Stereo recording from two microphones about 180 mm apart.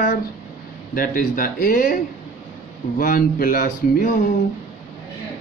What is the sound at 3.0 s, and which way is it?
Speech, 50° left (ahead or behind).